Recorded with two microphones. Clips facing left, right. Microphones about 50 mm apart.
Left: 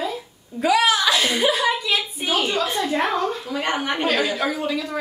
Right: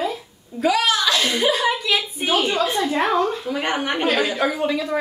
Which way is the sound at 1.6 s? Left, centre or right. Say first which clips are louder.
Right 1 dB; centre.